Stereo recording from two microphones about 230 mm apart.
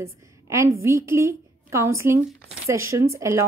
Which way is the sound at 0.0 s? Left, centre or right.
Centre.